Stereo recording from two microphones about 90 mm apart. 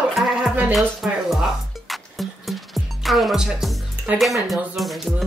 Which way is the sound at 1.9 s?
Centre (ahead or behind).